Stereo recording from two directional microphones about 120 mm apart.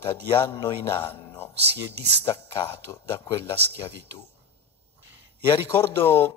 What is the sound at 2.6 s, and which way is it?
Speech, 20° left (ahead or behind).